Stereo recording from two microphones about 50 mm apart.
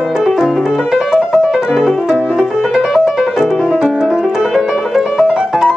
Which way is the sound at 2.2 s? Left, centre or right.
Centre.